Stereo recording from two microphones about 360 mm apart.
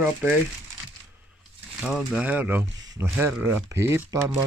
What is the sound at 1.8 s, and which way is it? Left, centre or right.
Speech, centre.